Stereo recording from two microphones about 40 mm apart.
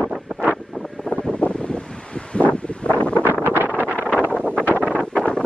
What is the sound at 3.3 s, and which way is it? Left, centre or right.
Wind noise, right.